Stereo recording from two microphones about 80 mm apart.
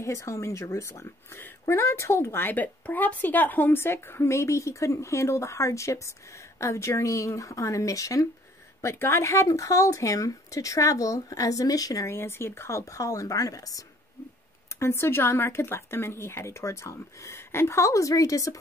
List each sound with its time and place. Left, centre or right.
0.0 s speech: left
12.1 s speech: left
14.8 s speech: left